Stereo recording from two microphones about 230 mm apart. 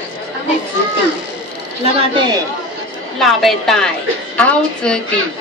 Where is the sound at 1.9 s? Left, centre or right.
Right.